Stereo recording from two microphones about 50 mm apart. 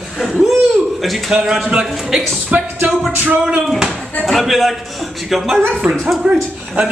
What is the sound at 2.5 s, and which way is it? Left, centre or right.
Music, right.